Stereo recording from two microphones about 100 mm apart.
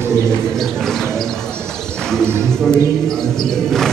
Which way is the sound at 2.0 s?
5° left (ahead or behind).